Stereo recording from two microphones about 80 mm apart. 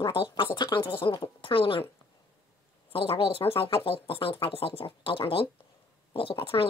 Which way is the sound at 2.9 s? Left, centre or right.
Left.